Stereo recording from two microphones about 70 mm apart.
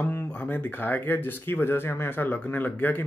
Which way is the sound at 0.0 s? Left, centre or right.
Left.